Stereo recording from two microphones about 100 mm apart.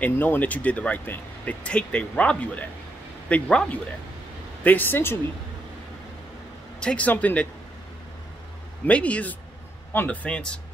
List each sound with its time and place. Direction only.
0.0 s speech: 15° left (ahead or behind)
6.8 s speech: 10° left (ahead or behind)
8.8 s speech: 15° left (ahead or behind)